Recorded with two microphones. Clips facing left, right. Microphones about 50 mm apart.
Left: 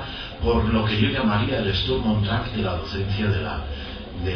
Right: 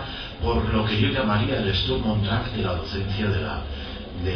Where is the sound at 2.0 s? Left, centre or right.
Centre.